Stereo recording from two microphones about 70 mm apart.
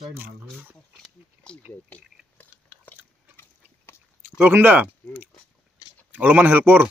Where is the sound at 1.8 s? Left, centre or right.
Left.